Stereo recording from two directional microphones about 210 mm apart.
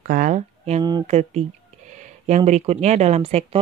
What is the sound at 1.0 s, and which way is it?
Speech, 30° right (ahead or behind).